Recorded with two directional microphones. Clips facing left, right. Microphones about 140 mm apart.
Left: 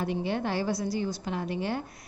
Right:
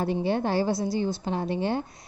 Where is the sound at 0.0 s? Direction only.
35° right (ahead or behind).